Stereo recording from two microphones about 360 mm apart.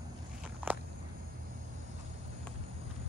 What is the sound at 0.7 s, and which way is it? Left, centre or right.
Walk, centre.